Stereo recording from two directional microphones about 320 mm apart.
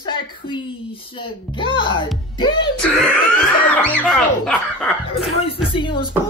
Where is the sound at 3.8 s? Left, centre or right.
Centre.